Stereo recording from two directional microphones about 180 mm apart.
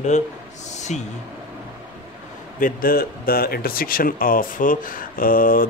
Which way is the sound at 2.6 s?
55° left (ahead or behind).